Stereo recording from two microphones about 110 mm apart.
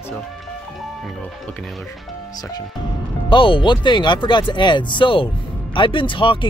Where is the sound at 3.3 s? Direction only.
50° left (ahead or behind).